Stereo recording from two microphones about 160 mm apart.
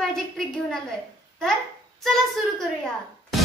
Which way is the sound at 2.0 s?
Centre (ahead or behind).